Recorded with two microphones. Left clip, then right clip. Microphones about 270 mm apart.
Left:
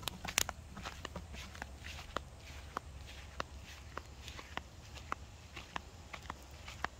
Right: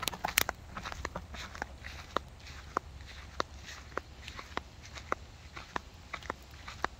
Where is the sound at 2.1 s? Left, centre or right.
Centre.